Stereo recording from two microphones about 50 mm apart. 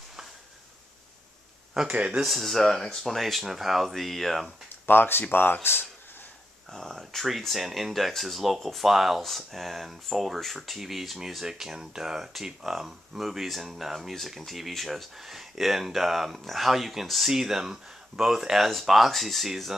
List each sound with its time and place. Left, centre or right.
1.9 s speech: right
2.2 s speech: centre
4.8 s speech: left
6.7 s speech: centre